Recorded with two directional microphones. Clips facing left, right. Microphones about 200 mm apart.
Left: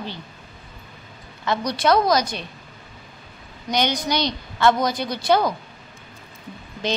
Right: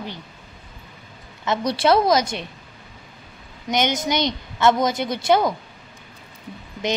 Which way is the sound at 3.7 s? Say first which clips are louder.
Right 1 dB; 20° right (ahead or behind).